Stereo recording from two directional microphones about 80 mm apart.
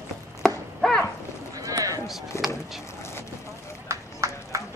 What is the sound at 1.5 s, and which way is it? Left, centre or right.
Run, right.